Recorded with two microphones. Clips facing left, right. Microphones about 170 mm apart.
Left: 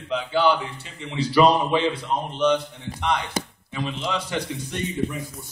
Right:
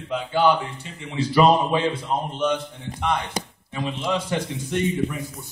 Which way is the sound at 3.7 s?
45° right (ahead or behind).